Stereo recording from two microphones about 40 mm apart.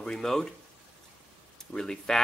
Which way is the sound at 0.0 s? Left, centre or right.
Centre.